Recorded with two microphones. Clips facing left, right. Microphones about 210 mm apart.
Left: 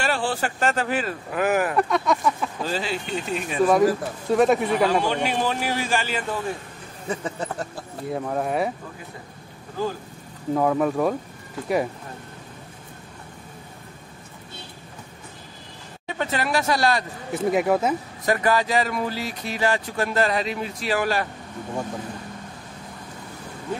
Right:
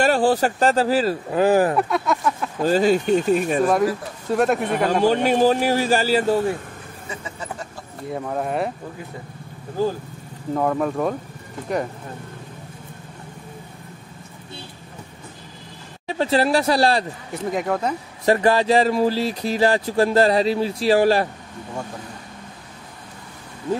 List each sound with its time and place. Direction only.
0.0 s speech: 40° right (ahead or behind)
1.8 s speech: 5° right (ahead or behind)
2.6 s speech: 45° right (ahead or behind)
3.6 s speech: centre (ahead or behind)
5.0 s speech: 40° right (ahead or behind)
8.1 s speech: centre (ahead or behind)
10.5 s speech: centre (ahead or behind)
16.2 s speech: 30° right (ahead or behind)
17.3 s speech: 5° left (ahead or behind)
18.2 s speech: 30° right (ahead or behind)